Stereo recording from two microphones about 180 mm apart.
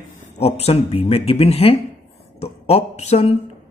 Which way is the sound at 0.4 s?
35° left (ahead or behind).